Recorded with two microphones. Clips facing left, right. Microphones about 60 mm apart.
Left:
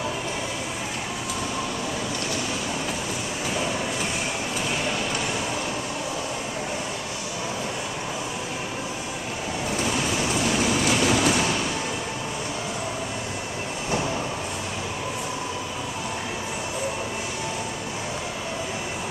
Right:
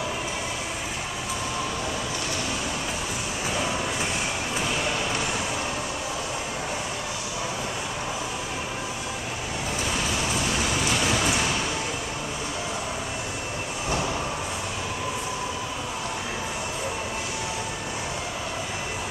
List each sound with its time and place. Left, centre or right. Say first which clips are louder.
10.9 s vehicle: left 4 dB; centre